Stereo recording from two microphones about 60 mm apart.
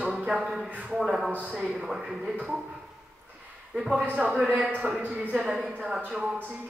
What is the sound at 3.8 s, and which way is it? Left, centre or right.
Speech, centre.